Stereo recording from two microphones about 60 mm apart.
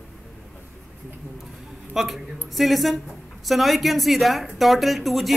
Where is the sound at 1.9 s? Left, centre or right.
Centre.